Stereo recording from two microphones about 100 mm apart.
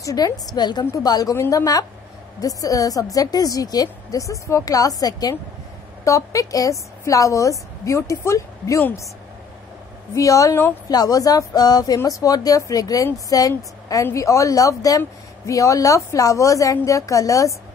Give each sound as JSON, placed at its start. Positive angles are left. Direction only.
{"t": 0.0, "sound": "speech", "side_deg": 40}
{"t": 10.1, "sound": "speech", "side_deg": 35}